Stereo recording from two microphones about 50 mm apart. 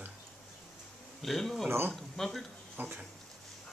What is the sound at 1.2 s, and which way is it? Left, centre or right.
A man's voice, centre.